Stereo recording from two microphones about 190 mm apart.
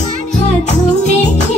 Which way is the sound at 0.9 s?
35° left (ahead or behind).